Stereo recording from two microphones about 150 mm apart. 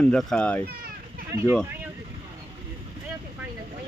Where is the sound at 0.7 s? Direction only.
90° right.